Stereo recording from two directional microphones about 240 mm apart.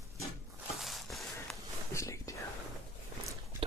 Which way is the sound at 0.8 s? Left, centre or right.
Centre.